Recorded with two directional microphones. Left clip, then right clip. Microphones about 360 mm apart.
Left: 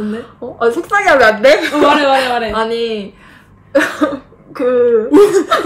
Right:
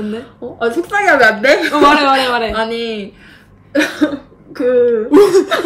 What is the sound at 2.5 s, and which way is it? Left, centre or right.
Speech, centre.